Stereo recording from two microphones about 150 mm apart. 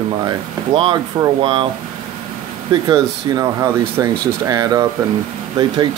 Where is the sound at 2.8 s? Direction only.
25° right (ahead or behind).